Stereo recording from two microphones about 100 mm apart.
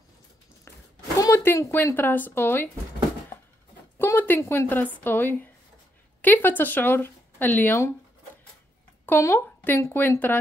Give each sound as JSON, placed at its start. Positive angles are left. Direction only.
{"t": 1.2, "sound": "speech", "side_deg": 25}
{"t": 4.0, "sound": "a sound", "side_deg": 20}
{"t": 4.4, "sound": "speech", "side_deg": 25}
{"t": 9.2, "sound": "speech", "side_deg": 25}